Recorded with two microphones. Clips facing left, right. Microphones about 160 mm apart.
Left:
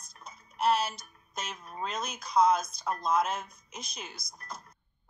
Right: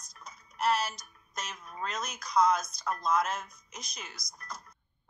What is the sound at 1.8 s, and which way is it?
Speech, 30° left (ahead or behind).